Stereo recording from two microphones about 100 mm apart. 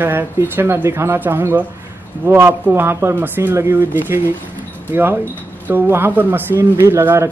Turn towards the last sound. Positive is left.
turn(degrees=-25)  # may be behind; listen again after turning